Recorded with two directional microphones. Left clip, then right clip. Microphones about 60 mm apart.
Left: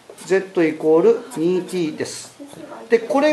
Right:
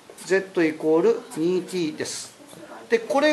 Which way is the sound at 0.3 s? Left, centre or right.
Right.